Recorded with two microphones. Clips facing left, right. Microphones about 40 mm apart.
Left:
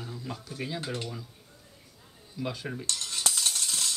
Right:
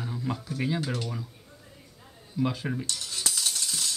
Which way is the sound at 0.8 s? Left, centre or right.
Centre.